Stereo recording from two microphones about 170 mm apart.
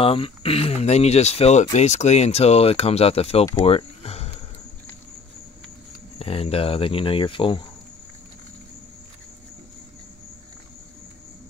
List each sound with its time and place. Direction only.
0.0 s speech: 35° left (ahead or behind)
6.1 s speech: 35° left (ahead or behind)